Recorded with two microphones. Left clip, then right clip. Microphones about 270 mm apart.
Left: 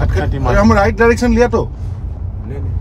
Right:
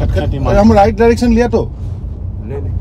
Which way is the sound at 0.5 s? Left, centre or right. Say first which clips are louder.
Right 3 dB; centre.